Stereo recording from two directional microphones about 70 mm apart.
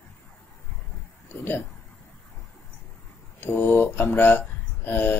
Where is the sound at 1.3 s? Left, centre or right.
Left.